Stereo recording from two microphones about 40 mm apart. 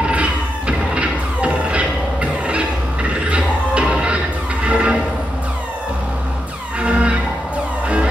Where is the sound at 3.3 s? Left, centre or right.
Right.